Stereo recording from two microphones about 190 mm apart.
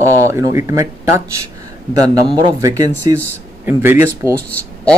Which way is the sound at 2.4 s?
20° right (ahead or behind).